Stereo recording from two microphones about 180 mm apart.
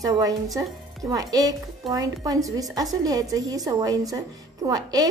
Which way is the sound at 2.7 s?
20° right (ahead or behind).